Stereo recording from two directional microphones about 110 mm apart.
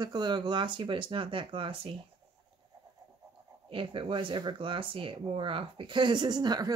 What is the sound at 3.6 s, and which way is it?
Speech, 50° right (ahead or behind).